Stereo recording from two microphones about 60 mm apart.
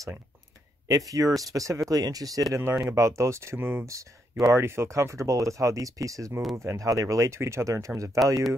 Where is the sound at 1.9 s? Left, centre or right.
Right.